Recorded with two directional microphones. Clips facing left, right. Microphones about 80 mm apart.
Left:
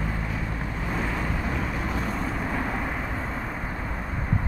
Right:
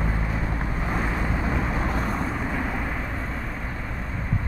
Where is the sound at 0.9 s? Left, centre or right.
Right.